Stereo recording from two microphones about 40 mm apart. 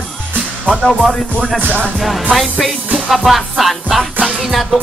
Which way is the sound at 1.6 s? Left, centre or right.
Right.